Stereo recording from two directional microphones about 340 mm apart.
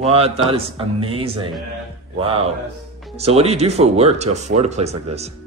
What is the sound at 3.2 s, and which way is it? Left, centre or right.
Speech, centre.